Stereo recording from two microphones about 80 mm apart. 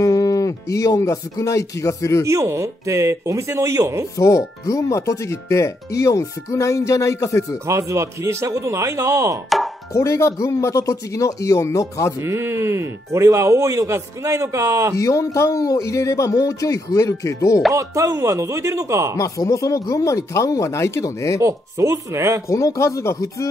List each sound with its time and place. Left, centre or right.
0.0 s speech: left
2.2 s speech: right
4.2 s speech: left
7.6 s speech: right
9.9 s speech: left
12.2 s speech: right
15.0 s speech: left
17.7 s speech: right
19.1 s speech: left
21.4 s speech: right
22.8 s speech: left